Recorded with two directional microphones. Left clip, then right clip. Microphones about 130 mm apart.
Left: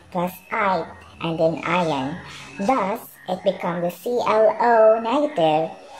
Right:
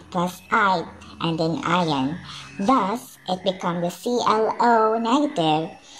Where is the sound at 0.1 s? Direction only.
40° right (ahead or behind).